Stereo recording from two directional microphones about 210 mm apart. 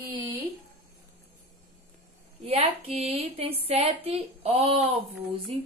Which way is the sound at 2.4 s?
30° right (ahead or behind).